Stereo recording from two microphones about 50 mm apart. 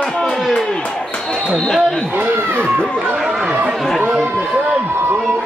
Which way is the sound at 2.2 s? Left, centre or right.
Right.